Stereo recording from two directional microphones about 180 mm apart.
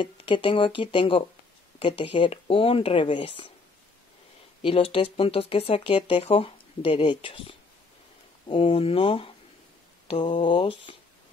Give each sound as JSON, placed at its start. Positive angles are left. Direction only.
{"t": 0.0, "sound": "speech", "side_deg": 30}
{"t": 4.6, "sound": "speech", "side_deg": 30}